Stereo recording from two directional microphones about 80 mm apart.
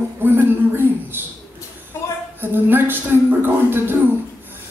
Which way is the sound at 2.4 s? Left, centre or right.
Right.